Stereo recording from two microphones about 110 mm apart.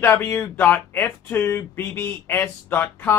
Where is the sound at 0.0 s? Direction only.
20° left (ahead or behind).